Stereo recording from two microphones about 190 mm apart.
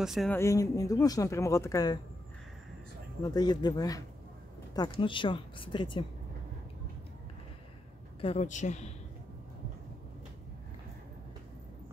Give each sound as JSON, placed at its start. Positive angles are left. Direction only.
{"t": 0.0, "sound": "speech", "side_deg": 0}
{"t": 0.3, "sound": "speech", "side_deg": 15}
{"t": 3.3, "sound": "speech", "side_deg": 20}
{"t": 8.2, "sound": "speech", "side_deg": 35}